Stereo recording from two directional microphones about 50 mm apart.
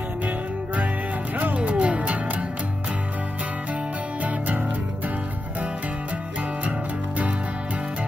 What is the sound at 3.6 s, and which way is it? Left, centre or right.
Music, right.